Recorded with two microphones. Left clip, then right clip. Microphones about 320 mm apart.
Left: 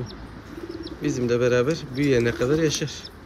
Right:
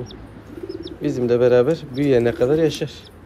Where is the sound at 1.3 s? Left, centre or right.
Centre.